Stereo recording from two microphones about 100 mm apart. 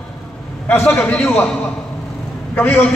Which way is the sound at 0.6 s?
25° left (ahead or behind).